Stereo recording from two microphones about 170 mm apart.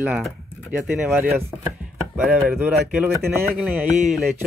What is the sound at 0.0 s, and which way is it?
Speech, centre (ahead or behind).